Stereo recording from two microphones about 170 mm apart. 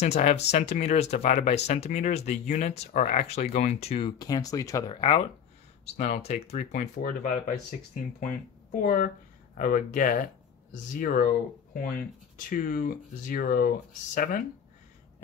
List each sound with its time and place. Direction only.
0.0 s speech: 40° left (ahead or behind)
4.2 s speech: 20° left (ahead or behind)
5.9 s speech: 45° left (ahead or behind)